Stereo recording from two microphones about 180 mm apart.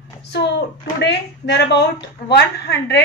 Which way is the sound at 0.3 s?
70° left (ahead or behind).